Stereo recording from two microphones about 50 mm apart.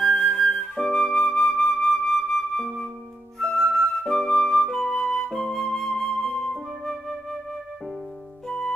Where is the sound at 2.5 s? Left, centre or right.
Centre.